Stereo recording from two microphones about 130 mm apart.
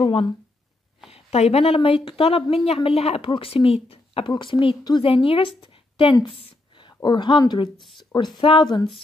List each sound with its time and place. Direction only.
1.1 s a woman's voice: 55° left (ahead or behind); by 8.9 s 35° left (ahead or behind)